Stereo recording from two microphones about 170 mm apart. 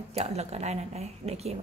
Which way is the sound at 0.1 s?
40° right (ahead or behind).